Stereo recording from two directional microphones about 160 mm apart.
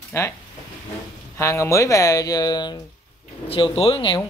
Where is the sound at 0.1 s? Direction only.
15° left (ahead or behind).